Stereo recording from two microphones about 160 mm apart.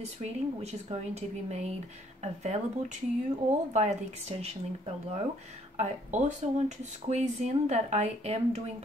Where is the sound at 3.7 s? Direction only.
45° right (ahead or behind).